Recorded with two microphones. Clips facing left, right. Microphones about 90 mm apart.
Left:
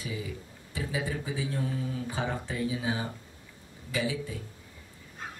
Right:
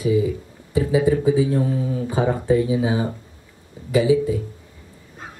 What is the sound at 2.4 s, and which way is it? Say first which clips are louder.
Speech: right 13 dB; 20° right (ahead or behind).